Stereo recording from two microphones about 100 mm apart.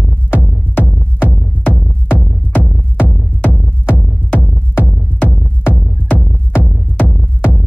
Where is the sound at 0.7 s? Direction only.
20° left (ahead or behind).